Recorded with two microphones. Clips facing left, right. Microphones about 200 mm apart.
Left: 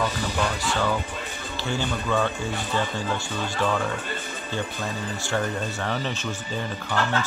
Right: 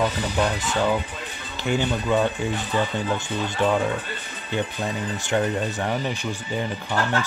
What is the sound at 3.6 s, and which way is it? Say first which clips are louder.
Speech: right 4 dB; 15° right (ahead or behind).